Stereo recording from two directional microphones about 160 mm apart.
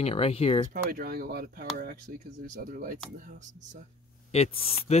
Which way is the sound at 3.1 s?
50° right (ahead or behind).